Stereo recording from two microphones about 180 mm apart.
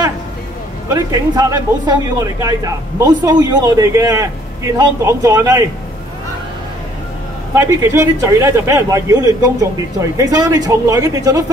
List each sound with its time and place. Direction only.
0.8 s speech: 20° right (ahead or behind)
7.5 s a man's voice: 15° right (ahead or behind)